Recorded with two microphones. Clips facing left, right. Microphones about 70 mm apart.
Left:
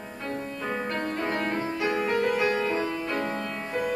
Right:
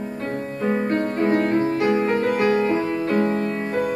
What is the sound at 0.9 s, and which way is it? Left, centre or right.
Music, right.